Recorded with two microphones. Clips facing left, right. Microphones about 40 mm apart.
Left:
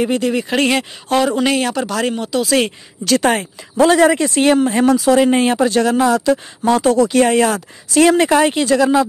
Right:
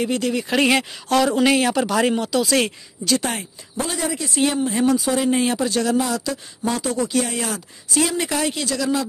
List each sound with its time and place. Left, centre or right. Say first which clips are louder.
0.0 s speech: left 5 dB; centre
0.6 s speech: even; centre
1.0 s speech: left 3 dB; centre
1.3 s speech: left 1 dB; centre
2.1 s speech: left 3 dB; centre
3.1 s a woman's voice: left 8 dB; left
5.2 s speech: left 6 dB; left
6.6 s speech: left 8 dB; left
7.9 s speech: left 10 dB; left
8.3 s speech: left 10 dB; left